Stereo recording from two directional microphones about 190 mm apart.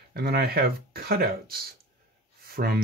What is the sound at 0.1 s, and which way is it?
Speech, 55° right (ahead or behind).